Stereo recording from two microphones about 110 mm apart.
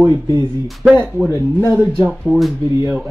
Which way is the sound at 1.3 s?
20° right (ahead or behind).